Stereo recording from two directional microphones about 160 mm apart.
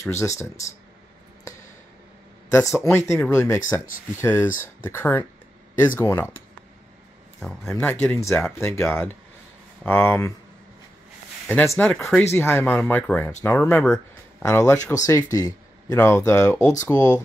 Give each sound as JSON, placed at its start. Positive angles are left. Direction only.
{"t": 0.0, "sound": "speech", "side_deg": 20}
{"t": 2.5, "sound": "speech", "side_deg": 15}
{"t": 7.3, "sound": "speech", "side_deg": 0}
{"t": 11.4, "sound": "speech", "side_deg": 10}